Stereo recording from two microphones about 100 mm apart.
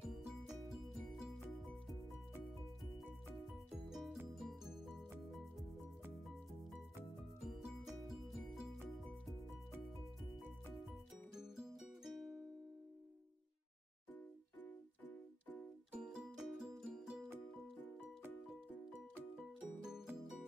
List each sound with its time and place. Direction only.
0.7 s music: centre (ahead or behind)
3.9 s music: centre (ahead or behind)
7.3 s music: centre (ahead or behind)
11.3 s music: 5° right (ahead or behind)
14.6 s keyboard: 15° left (ahead or behind)
15.9 s music: 10° right (ahead or behind)
19.8 s music: 5° right (ahead or behind)